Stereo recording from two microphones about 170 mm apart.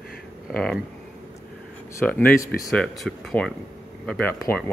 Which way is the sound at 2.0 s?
10° left (ahead or behind).